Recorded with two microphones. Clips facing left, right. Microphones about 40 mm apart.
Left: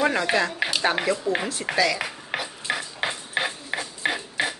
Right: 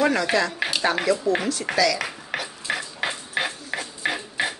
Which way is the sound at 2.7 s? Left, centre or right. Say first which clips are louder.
Right 1 dB; centre.